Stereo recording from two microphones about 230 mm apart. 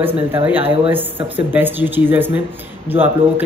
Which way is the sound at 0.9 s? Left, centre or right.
Centre.